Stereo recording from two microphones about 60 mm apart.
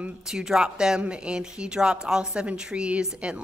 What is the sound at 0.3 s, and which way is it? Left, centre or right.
A woman's voice, centre.